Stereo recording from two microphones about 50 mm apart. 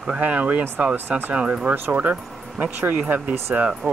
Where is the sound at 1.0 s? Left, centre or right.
Right.